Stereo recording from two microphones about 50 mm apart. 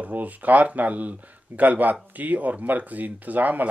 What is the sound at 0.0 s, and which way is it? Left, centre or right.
Speech, right.